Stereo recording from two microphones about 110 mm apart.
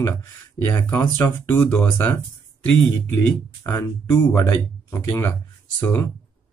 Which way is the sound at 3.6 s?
25° left (ahead or behind).